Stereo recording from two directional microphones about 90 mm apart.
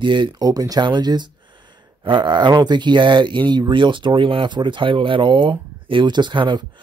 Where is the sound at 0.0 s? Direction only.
60° right (ahead or behind).